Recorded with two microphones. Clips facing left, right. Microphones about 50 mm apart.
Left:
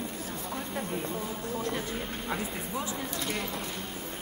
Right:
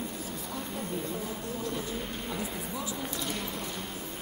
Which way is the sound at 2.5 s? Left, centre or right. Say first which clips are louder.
Left 2 dB; left.